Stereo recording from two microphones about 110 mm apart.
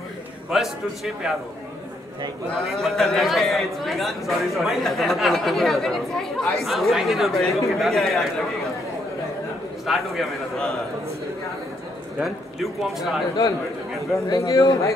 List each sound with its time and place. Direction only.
0.5 s a man's voice: 5° right (ahead or behind)
2.5 s a man's voice: centre (ahead or behind)
9.8 s a man's voice: centre (ahead or behind)
12.2 s a man's voice: centre (ahead or behind)
14.1 s a man's voice: 30° left (ahead or behind)